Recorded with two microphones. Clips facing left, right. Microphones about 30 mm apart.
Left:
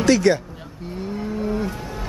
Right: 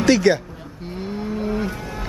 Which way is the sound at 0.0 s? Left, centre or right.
Centre.